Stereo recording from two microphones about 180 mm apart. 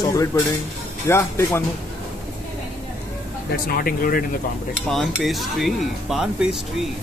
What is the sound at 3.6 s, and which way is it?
Speech, 55° left (ahead or behind).